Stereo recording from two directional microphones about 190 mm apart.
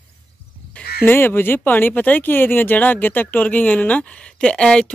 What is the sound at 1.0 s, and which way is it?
Speech, 10° left (ahead or behind).